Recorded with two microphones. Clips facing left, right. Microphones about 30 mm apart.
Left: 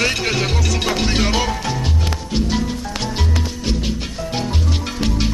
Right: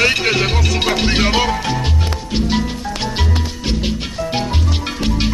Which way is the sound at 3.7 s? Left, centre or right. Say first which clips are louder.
Right 3 dB; right.